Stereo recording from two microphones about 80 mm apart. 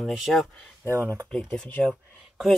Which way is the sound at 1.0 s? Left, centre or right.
Right.